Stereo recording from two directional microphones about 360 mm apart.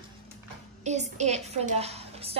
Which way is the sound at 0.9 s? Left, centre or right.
Centre.